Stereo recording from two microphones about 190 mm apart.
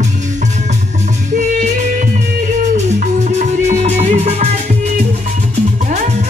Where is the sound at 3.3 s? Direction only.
35° right (ahead or behind).